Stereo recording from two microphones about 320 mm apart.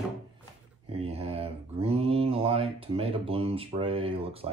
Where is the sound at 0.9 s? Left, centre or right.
Centre.